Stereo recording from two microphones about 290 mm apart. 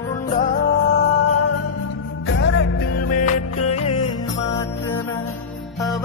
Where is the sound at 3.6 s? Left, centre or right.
Left.